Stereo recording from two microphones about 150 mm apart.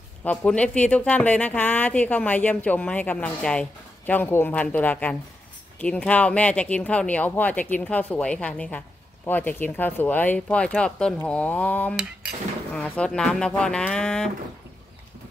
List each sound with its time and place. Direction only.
0.2 s speech: 10° left (ahead or behind)